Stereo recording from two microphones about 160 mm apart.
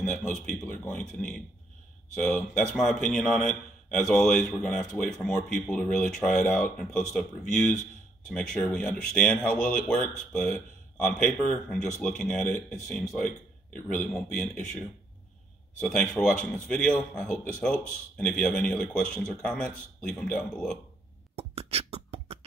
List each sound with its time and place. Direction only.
0.1 s a man's voice: 5° left (ahead or behind)
8.3 s a man's voice: 5° left (ahead or behind)
15.8 s a man's voice: 5° left (ahead or behind)
21.4 s beatboxing: 40° right (ahead or behind)